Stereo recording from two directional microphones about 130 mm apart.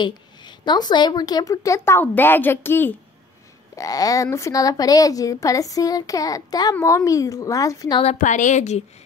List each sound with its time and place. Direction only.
0.0 s a woman's voice: 35° left (ahead or behind); by 3.0 s 15° left (ahead or behind)
3.7 s a woman's voice: 25° left (ahead or behind)
8.2 s a woman's voice: 75° left (ahead or behind)